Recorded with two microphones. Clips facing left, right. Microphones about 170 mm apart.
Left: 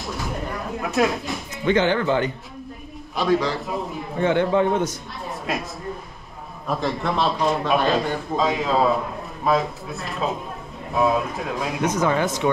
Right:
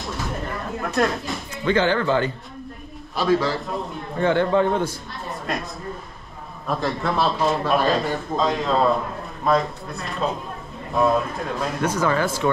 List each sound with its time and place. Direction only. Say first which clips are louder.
0.0 s a sound: even; centre (ahead or behind)
1.7 s speech: even; 20° left (ahead or behind)
3.2 s a man's voice: even; centre (ahead or behind)
4.2 s speech: even; 20° left (ahead or behind)
5.3 s a sound: left 1 dB; centre (ahead or behind)
6.7 s a man's voice: even; centre (ahead or behind)